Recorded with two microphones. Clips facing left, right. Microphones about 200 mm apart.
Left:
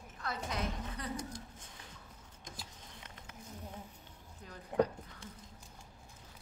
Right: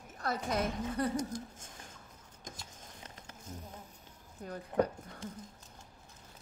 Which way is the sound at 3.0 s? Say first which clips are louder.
Right 2 dB; 40° right (ahead or behind).